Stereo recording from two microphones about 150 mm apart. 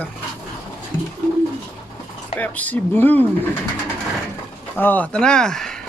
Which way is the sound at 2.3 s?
10° left (ahead or behind).